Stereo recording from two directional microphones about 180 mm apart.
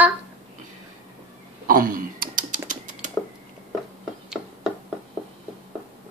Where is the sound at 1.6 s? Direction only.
50° right (ahead or behind).